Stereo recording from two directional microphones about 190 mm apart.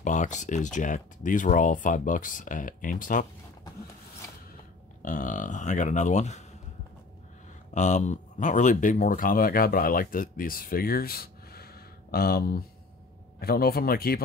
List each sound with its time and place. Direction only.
0.0 s speech: 40° left (ahead or behind)
5.0 s speech: 45° left (ahead or behind)
7.7 s speech: 40° left (ahead or behind)